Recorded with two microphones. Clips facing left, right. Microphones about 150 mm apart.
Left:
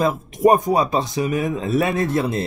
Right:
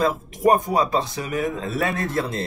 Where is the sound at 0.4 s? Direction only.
15° left (ahead or behind).